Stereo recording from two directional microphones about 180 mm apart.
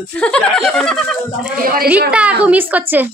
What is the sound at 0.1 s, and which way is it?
Speech, 5° left (ahead or behind).